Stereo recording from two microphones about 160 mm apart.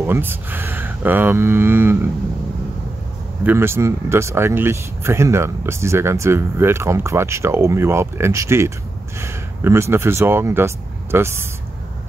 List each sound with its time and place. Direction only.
0.0 s speech: 15° right (ahead or behind)
3.4 s speech: 15° right (ahead or behind)